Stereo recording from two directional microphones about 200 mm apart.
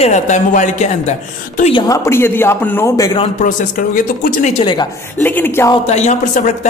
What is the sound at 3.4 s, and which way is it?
Speech, 40° left (ahead or behind).